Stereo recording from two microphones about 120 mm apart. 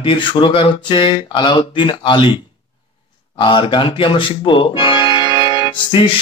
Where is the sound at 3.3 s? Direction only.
40° left (ahead or behind).